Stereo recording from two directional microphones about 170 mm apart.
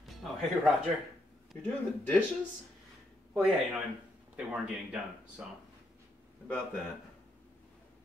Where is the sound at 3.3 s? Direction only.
5° right (ahead or behind).